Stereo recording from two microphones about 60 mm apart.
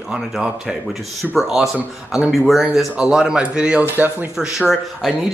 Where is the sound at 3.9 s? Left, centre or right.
Right.